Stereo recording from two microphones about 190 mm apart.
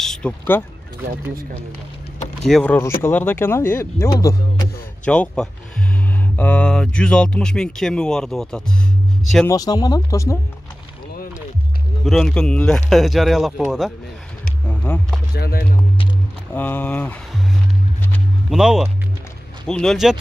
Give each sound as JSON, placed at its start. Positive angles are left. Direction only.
{"t": 0.0, "sound": "speech", "side_deg": 5}
{"t": 2.4, "sound": "speech", "side_deg": 5}
{"t": 5.1, "sound": "speech", "side_deg": 5}
{"t": 9.5, "sound": "speech", "side_deg": 20}
{"t": 12.0, "sound": "speech", "side_deg": 0}
{"t": 14.7, "sound": "music", "side_deg": 10}
{"t": 15.3, "sound": "speech", "side_deg": 55}
{"t": 16.5, "sound": "speech", "side_deg": 10}
{"t": 18.5, "sound": "speech", "side_deg": -5}